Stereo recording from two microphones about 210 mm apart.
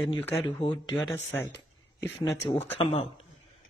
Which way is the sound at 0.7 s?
10° left (ahead or behind).